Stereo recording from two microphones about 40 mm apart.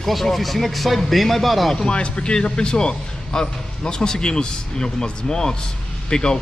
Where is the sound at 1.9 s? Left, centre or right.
Left.